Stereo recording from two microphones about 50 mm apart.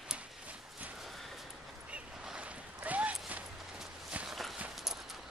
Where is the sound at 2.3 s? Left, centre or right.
Right.